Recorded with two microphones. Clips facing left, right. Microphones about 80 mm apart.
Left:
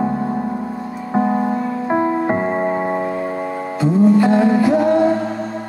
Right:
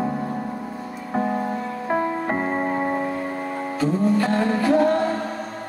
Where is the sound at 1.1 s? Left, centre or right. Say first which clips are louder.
Left 6 dB; centre.